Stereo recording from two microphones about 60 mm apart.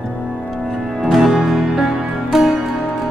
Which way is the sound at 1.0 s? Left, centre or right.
Centre.